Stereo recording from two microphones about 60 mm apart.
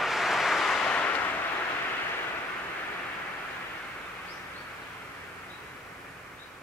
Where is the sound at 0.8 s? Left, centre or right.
Left.